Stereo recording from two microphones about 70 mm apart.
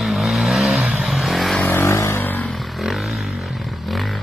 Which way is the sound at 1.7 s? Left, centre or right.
Left.